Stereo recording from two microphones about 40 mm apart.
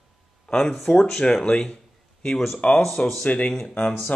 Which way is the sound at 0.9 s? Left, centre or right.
Left.